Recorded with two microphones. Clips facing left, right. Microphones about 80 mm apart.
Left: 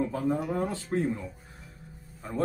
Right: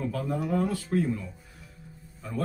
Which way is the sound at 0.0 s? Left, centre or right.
Left.